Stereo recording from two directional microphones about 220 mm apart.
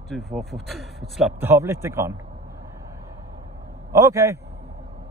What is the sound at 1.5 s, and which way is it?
Speech, 10° right (ahead or behind).